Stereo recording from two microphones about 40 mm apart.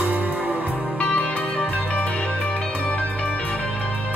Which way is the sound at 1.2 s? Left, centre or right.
Left.